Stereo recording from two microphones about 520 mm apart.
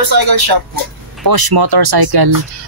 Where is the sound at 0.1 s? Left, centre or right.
Right.